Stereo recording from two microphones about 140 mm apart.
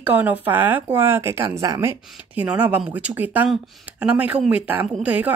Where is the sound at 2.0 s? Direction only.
10° right (ahead or behind).